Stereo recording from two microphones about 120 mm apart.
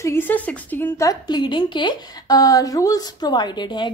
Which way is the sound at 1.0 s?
30° left (ahead or behind).